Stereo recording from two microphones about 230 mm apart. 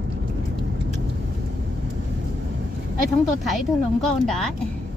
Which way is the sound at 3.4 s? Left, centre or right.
Centre.